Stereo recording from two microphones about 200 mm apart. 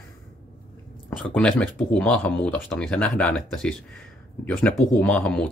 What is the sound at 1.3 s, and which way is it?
Speech, 5° left (ahead or behind).